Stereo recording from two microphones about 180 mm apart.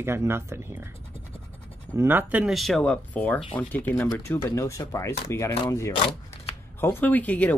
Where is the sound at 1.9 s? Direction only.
10° right (ahead or behind).